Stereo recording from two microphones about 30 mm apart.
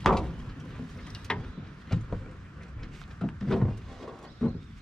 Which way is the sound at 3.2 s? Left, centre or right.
Centre.